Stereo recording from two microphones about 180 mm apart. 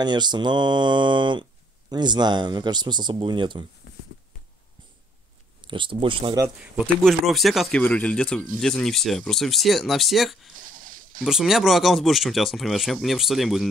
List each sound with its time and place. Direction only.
0.0 s speech: 25° right (ahead or behind)
5.6 s speech: 25° right (ahead or behind)
6.4 s speech: 5° right (ahead or behind)
10.6 s a sound: 50° right (ahead or behind)
11.2 s speech: centre (ahead or behind)